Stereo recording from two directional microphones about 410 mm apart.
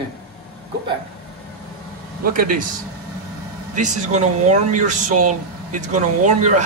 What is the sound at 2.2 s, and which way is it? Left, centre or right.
Speech, right.